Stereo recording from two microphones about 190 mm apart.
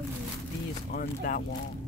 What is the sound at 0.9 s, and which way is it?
Speech, 50° left (ahead or behind).